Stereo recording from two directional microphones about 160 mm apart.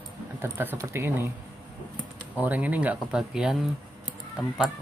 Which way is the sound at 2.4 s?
10° right (ahead or behind).